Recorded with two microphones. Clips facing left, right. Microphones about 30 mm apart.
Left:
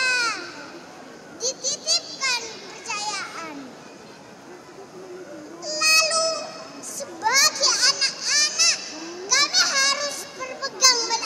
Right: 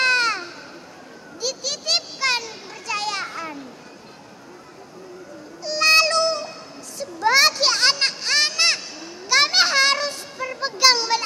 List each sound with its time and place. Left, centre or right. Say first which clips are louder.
0.0 s baby cry: right 4 dB; right
1.4 s children playing: right 2 dB; right
5.6 s music: right 4 dB; right
7.0 s children playing: right 4 dB; right